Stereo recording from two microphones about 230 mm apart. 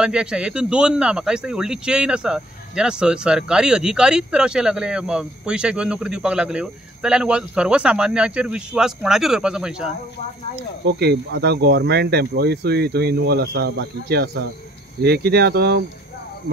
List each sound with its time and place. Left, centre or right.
0.0 s speech: centre
10.9 s speech: right